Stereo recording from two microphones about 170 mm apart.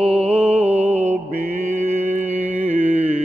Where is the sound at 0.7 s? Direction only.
40° right (ahead or behind).